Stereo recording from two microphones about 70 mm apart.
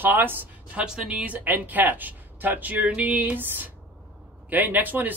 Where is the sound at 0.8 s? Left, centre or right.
Centre.